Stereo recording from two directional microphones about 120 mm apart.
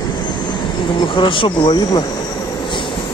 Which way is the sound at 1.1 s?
45° left (ahead or behind).